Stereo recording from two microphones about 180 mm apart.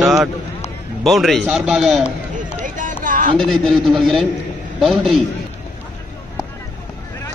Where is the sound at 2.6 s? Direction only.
45° right (ahead or behind).